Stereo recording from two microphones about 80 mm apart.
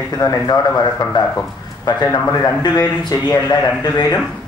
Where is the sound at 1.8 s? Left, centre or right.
Left.